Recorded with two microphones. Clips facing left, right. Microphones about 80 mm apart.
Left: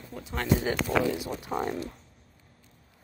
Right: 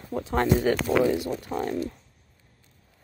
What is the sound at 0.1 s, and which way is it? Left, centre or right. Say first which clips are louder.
Speech: right 11 dB; right.